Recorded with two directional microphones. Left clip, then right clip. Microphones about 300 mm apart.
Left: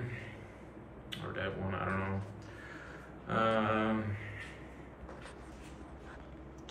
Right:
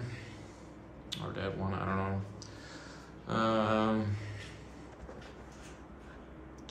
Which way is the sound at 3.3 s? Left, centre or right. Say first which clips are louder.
Right 1 dB; centre.